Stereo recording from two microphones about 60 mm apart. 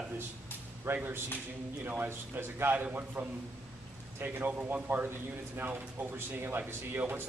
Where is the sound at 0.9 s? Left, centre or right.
Right.